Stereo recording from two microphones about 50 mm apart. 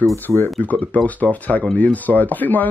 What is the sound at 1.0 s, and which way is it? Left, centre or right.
Speech, left.